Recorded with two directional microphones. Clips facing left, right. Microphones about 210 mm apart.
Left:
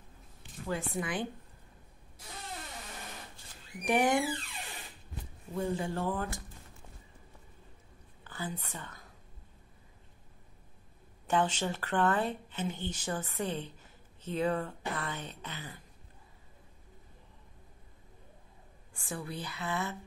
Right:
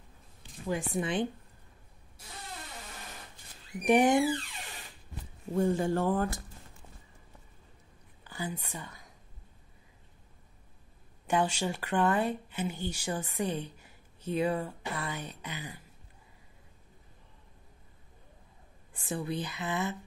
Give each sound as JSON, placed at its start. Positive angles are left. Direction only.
{"t": 0.7, "sound": "speech", "side_deg": -15}
{"t": 3.8, "sound": "speech", "side_deg": -20}
{"t": 5.5, "sound": "speech", "side_deg": -45}
{"t": 8.2, "sound": "a woman's voice", "side_deg": -10}
{"t": 11.2, "sound": "speech", "side_deg": -10}
{"t": 19.0, "sound": "speech", "side_deg": -20}